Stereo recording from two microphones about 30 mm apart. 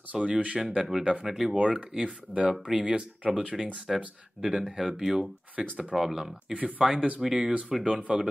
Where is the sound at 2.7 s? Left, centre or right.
Right.